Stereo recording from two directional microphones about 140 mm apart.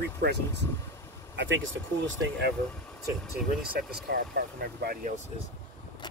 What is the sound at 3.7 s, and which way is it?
Speech, 90° right.